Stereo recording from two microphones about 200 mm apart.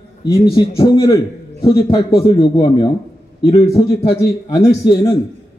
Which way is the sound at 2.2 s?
30° left (ahead or behind).